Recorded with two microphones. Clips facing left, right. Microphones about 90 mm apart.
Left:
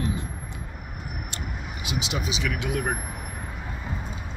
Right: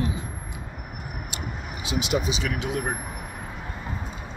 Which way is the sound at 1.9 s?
50° right (ahead or behind).